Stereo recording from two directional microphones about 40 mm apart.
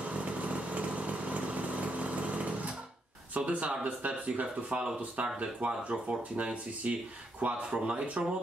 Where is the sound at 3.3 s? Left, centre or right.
Right.